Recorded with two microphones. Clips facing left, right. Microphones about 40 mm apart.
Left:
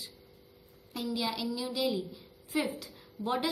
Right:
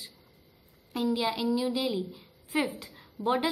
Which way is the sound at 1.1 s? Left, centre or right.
Right.